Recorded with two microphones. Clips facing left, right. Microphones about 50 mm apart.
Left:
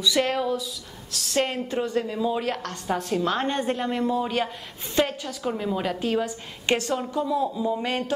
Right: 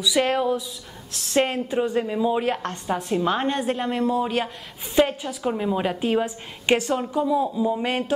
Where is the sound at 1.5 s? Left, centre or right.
Centre.